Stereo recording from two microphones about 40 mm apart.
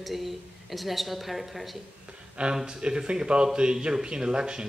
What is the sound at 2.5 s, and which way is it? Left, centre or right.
Speech, right.